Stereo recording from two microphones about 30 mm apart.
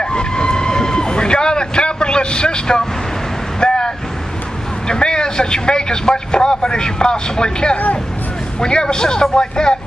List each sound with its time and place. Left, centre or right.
0.0 s vehicle: left
4.8 s a man's voice: left
7.7 s speech: left
8.5 s a man's voice: left